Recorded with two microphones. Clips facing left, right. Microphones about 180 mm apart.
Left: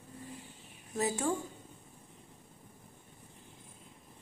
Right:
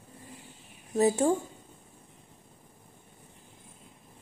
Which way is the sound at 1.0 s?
30° right (ahead or behind).